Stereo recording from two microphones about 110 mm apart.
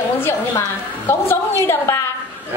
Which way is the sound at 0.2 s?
20° left (ahead or behind).